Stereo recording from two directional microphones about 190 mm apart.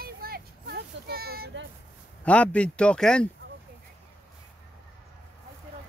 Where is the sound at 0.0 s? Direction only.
55° right (ahead or behind).